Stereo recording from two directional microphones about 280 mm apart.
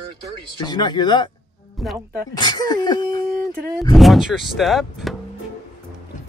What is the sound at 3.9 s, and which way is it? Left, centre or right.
Speech, centre.